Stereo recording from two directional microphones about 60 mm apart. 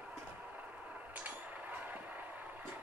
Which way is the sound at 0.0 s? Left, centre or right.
Right.